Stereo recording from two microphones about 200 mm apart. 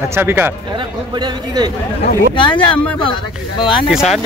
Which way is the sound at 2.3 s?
25° left (ahead or behind).